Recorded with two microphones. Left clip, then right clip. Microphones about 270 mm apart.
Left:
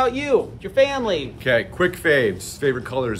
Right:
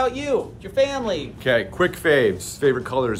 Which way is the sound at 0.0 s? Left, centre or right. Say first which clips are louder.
Left 3 dB; left.